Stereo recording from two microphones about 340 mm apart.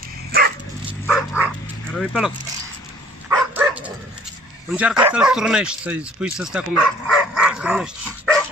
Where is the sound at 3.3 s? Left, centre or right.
Centre.